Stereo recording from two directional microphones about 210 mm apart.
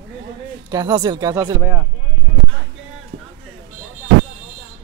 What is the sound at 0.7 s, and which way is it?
Speech, 20° right (ahead or behind).